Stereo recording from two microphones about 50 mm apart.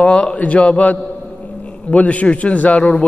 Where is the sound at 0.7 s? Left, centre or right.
Left.